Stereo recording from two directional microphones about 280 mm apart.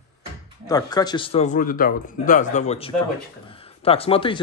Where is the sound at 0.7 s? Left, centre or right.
Centre.